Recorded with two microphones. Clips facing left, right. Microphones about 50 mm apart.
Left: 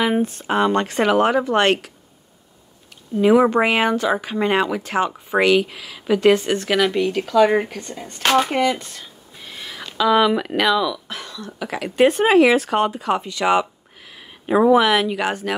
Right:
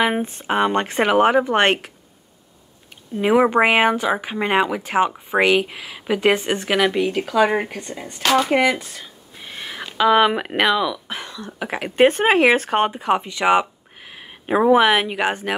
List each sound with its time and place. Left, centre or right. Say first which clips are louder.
0.0 s speech: left 1 dB; right
3.2 s speech: left 1 dB; right
8.2 s speech: left 1 dB; left
8.5 s speech: right 2 dB; centre
9.6 s a sound: right 3 dB; right
9.9 s speech: right 1 dB; right